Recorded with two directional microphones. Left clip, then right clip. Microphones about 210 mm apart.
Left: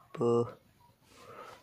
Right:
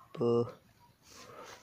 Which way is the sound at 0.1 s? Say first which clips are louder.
Left 1 dB; 10° left (ahead or behind).